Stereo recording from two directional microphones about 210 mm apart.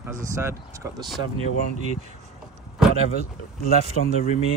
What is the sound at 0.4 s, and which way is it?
Speech, 10° right (ahead or behind).